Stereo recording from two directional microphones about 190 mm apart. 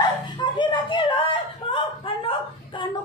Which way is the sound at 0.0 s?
25° left (ahead or behind).